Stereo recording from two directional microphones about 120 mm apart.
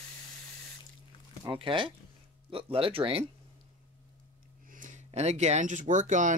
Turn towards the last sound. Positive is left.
turn(degrees=-90)